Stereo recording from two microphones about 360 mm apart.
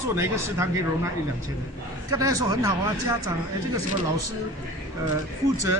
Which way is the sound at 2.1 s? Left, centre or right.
Centre.